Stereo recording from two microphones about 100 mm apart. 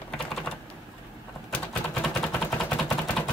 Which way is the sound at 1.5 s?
10° left (ahead or behind).